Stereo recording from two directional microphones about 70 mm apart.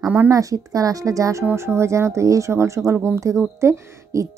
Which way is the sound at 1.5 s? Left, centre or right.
Right.